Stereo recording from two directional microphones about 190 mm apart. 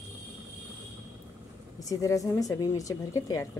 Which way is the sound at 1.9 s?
20° left (ahead or behind).